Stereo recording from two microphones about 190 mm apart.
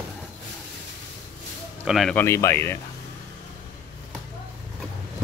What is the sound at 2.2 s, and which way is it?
Speech, 15° left (ahead or behind).